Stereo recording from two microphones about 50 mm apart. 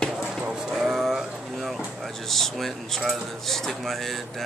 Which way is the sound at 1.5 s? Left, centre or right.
Centre.